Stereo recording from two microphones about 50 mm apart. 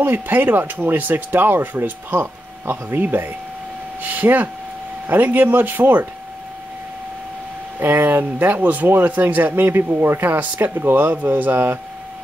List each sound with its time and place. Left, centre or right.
0.3 s speech: right
7.8 s speech: right
10.7 s speech: right